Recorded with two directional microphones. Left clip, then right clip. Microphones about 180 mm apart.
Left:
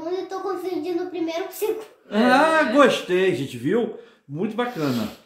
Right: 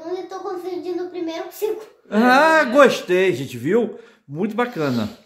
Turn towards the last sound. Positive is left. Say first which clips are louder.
# right 3 dB
turn(degrees=-45)  # may be behind; listen again after turning